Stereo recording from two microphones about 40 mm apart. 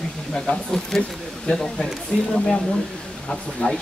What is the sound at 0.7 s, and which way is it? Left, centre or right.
Speech, centre.